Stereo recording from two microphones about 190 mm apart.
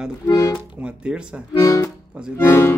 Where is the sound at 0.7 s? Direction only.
5° right (ahead or behind).